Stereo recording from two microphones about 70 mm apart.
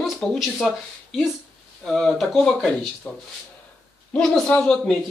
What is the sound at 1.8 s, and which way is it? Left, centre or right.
Speech, centre.